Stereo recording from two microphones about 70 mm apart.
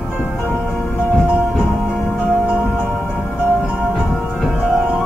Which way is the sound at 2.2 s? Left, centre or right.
Centre.